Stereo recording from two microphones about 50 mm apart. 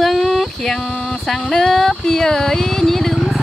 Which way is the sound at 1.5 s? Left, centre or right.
Centre.